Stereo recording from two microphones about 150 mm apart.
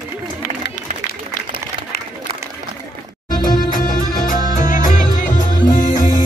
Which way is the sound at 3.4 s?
65° left (ahead or behind).